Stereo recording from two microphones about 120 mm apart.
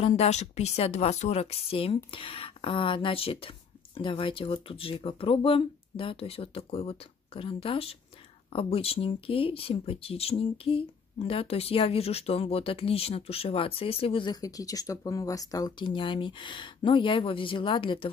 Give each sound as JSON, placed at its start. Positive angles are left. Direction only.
{"t": 0.0, "sound": "speech", "side_deg": 60}
{"t": 15.7, "sound": "speech", "side_deg": 45}